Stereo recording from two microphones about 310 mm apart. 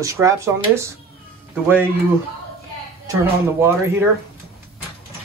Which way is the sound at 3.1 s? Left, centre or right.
Centre.